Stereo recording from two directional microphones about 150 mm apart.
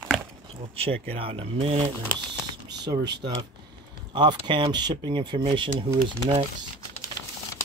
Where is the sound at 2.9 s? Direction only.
25° right (ahead or behind).